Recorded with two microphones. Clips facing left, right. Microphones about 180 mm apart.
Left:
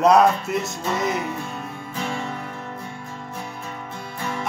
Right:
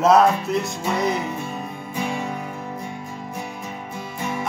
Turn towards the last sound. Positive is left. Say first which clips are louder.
# right 2 dB
turn(degrees=-10)  # may be behind; listen again after turning